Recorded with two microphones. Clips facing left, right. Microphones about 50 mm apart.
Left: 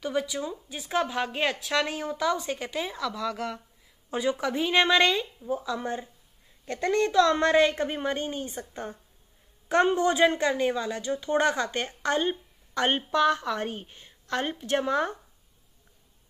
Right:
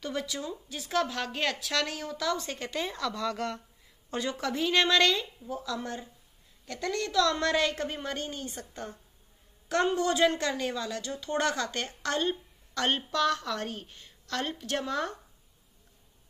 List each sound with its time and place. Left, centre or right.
0.0 s a woman's voice: centre